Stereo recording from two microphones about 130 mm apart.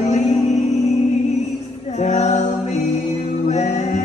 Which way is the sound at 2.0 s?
60° left (ahead or behind).